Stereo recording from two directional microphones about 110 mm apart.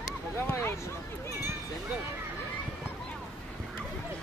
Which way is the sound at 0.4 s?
25° left (ahead or behind).